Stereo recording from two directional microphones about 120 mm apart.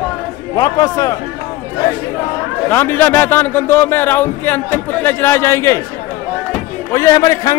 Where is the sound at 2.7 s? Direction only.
15° left (ahead or behind).